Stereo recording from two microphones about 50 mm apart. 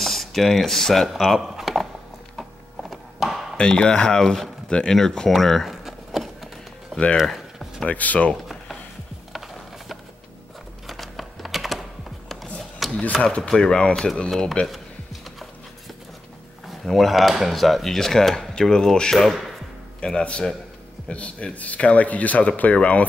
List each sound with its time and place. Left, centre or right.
0.0 s speech: centre
2.8 s a sound: centre
3.5 s speech: centre
5.3 s a sound: centre
7.8 s speech: left
10.9 s typing: centre
13.1 s speech: left
16.8 s speech: centre
20.0 s speech: centre